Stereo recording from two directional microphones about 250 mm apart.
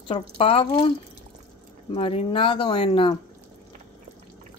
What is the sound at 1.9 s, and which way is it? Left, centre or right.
Speech, left.